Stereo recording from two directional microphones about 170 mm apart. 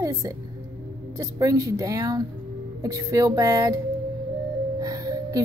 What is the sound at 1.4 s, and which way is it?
A woman's voice, 20° right (ahead or behind).